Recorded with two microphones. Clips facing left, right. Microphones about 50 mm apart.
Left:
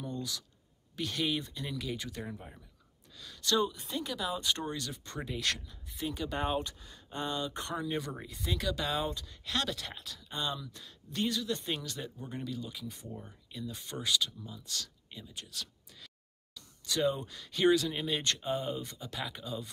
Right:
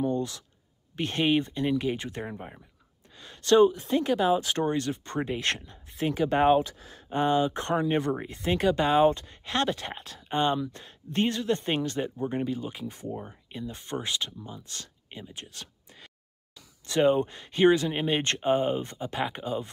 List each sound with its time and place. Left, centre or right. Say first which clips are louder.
0.0 s speech: right 11 dB; right
4.7 s speech: right 11 dB; right
7.8 s speech: right 9 dB; right